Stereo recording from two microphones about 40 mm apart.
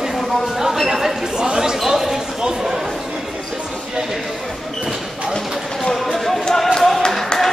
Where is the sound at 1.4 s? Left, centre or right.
Centre.